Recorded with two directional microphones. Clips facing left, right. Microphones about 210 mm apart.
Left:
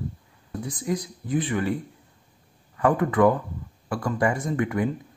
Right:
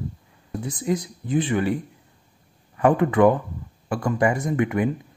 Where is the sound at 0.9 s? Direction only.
25° right (ahead or behind).